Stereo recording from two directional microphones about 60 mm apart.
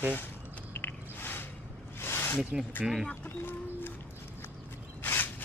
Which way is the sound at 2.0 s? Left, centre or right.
Left.